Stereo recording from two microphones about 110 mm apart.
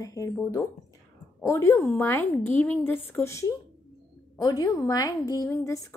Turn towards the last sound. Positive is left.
turn(degrees=30)  # may be behind; listen again after turning